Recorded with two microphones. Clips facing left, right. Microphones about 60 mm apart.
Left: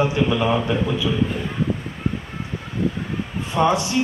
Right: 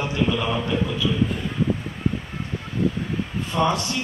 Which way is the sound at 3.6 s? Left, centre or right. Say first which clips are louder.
Left 4 dB; centre.